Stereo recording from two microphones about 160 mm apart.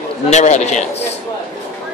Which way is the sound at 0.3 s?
45° left (ahead or behind).